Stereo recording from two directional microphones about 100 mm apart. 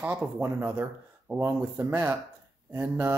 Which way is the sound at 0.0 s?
15° right (ahead or behind).